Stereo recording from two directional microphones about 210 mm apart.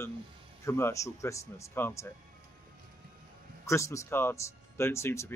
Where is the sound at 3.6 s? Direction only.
15° left (ahead or behind).